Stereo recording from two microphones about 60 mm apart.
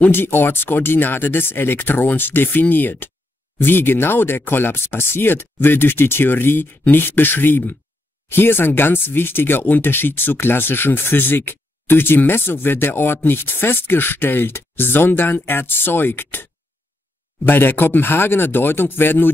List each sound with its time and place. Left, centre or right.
0.0 s speech: left
17.5 s speech: left